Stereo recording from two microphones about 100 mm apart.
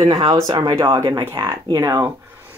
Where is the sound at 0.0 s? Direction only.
40° right (ahead or behind).